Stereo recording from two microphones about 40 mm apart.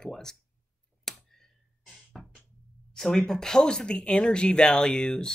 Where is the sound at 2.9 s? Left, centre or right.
Centre.